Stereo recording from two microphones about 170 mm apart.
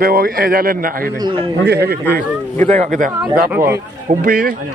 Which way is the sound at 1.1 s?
25° right (ahead or behind).